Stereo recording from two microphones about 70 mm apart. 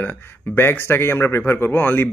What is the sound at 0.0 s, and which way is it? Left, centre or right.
Speech, left.